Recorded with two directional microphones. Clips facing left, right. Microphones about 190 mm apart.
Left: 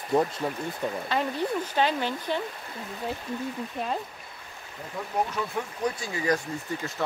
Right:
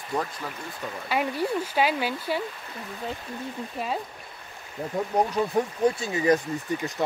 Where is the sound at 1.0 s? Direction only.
10° right (ahead or behind).